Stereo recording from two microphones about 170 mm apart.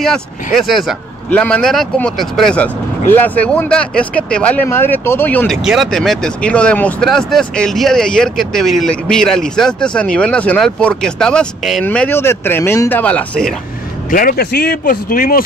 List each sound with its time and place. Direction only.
0.0 s speech: centre (ahead or behind)
5.6 s speech: centre (ahead or behind)
14.1 s speech: 60° left (ahead or behind)